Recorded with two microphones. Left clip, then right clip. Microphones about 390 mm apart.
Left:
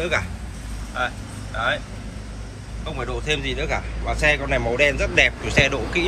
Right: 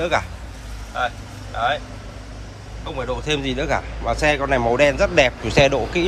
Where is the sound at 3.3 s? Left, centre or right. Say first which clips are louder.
Even; centre.